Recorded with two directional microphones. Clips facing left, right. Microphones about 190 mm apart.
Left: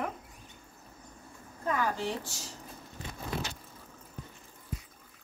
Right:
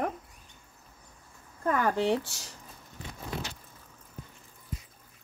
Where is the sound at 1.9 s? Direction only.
65° right (ahead or behind).